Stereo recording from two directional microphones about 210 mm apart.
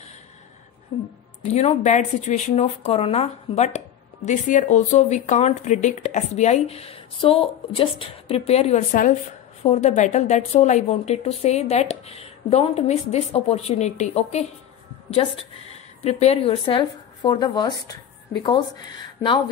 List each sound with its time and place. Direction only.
1.5 s speech: 30° left (ahead or behind)
16.0 s speech: 30° left (ahead or behind)